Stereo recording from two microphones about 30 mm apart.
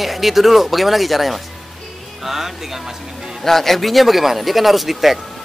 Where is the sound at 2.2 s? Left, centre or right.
Centre.